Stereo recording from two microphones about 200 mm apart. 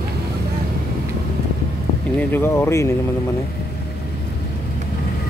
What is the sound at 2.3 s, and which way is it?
Speech, 10° left (ahead or behind).